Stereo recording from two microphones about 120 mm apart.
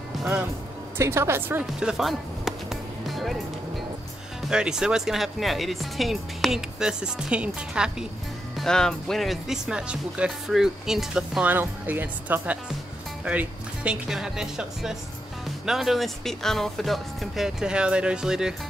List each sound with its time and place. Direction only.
0.9 s a woman's voice: 20° right (ahead or behind)
1.6 s music: 5° right (ahead or behind)
4.5 s speech: 5° right (ahead or behind)
8.5 s speech: 5° left (ahead or behind)